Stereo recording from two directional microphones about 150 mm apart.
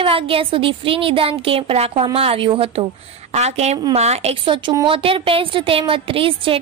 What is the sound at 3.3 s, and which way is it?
A woman's voice, 45° right (ahead or behind).